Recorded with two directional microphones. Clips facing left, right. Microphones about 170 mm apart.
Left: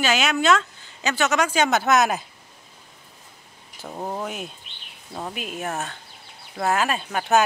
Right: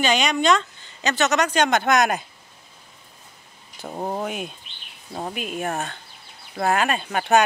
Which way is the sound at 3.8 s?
15° right (ahead or behind).